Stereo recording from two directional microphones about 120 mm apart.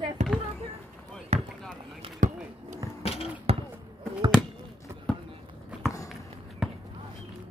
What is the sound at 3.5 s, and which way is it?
Basketball bounce, 55° right (ahead or behind).